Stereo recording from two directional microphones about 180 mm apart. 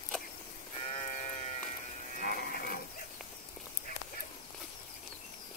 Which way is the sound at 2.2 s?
55° left (ahead or behind).